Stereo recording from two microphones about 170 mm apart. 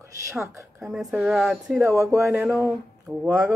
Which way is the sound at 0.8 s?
Centre (ahead or behind).